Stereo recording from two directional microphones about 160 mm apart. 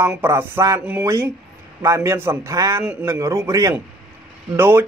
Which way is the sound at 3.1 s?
20° right (ahead or behind).